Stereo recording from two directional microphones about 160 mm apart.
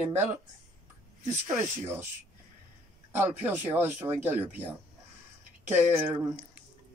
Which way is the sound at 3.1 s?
10° right (ahead or behind).